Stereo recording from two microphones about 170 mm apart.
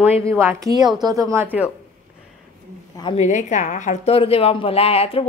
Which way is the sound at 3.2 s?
45° left (ahead or behind).